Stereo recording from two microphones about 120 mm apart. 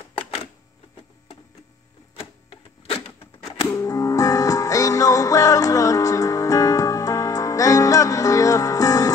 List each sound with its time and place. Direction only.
0.1 s a sound: 55° left (ahead or behind)
2.1 s printer: 50° left (ahead or behind)
3.7 s music: 30° left (ahead or behind)